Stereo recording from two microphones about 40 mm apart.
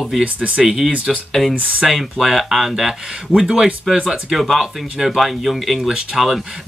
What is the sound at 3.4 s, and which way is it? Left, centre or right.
Speech, right.